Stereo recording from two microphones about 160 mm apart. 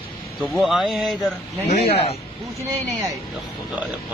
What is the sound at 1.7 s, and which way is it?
Speech, 40° left (ahead or behind).